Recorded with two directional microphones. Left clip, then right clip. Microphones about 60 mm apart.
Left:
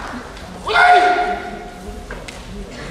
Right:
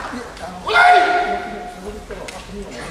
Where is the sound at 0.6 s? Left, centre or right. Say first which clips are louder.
Even; centre.